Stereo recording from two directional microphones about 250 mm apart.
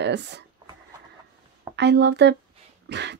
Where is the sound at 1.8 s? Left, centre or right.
Right.